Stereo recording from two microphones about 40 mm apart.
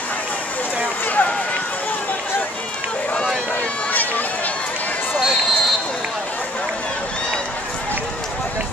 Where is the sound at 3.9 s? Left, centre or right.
Left.